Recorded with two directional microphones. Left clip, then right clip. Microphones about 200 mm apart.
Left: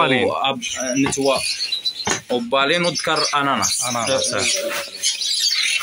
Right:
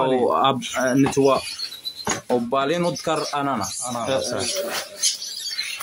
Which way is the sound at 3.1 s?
5° right (ahead or behind).